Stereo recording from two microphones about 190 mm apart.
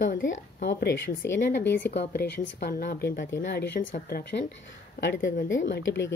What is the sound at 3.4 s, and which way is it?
A woman's voice, 60° left (ahead or behind).